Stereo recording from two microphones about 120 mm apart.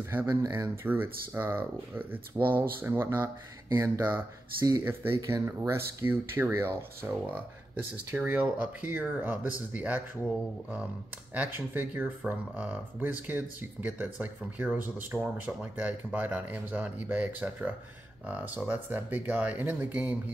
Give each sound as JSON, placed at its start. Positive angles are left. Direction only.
{"t": 0.1, "sound": "speech", "side_deg": -20}
{"t": 11.3, "sound": "speech", "side_deg": -15}